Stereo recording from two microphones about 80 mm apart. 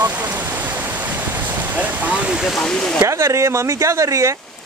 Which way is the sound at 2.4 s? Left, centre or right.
Centre.